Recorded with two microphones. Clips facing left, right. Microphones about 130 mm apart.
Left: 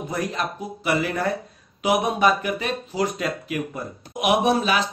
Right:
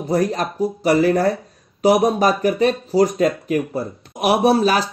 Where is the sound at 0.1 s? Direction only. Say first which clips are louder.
Right 9 dB; 40° right (ahead or behind).